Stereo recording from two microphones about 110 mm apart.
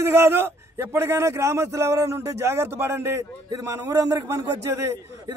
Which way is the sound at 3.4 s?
40° right (ahead or behind).